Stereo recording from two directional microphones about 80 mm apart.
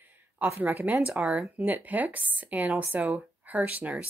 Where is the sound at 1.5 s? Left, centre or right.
Right.